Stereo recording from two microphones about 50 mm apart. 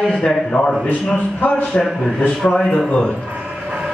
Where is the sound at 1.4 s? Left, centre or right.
Left.